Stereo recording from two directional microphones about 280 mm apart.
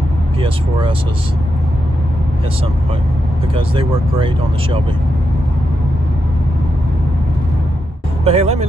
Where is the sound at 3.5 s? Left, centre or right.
Centre.